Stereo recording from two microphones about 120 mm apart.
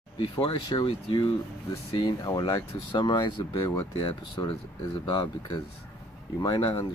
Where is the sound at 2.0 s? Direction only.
35° left (ahead or behind).